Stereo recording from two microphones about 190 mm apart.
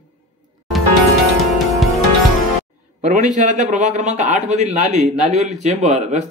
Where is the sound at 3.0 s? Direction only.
40° right (ahead or behind).